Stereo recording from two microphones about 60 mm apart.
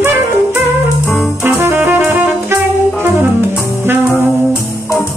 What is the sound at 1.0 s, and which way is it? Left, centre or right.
Music, left.